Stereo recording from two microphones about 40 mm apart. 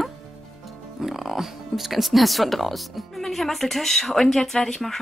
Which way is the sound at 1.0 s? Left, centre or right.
Centre.